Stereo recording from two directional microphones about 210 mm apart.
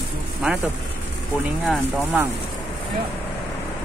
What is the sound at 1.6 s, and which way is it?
Speech, centre (ahead or behind).